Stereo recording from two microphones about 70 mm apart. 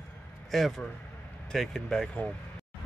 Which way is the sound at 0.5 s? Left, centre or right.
Centre.